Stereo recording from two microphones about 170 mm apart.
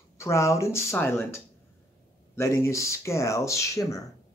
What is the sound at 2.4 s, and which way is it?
Speech, 15° left (ahead or behind).